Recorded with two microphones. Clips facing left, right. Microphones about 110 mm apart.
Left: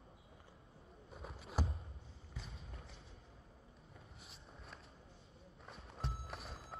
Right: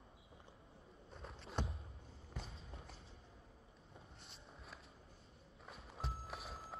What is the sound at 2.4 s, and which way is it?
Clip-clop, 30° right (ahead or behind).